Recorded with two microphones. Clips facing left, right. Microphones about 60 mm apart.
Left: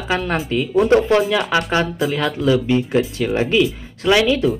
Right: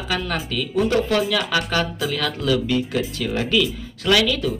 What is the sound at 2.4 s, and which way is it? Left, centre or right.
Speech, left.